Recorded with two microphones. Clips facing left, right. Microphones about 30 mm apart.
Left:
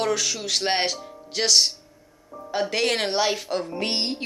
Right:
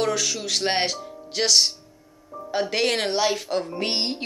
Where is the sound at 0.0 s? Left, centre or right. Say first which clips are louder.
Even; centre.